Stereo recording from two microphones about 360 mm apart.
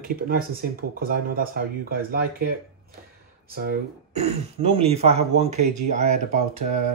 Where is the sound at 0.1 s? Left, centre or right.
Right.